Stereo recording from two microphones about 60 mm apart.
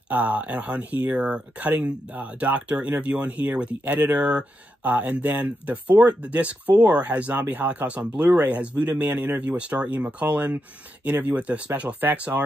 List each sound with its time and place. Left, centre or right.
0.1 s speech: right
9.5 s speech: centre
12.3 s speech: right